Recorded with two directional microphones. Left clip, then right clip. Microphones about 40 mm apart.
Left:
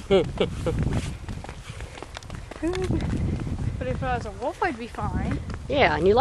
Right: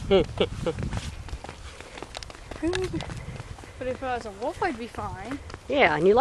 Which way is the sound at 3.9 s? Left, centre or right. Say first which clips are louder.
Left 1 dB; left.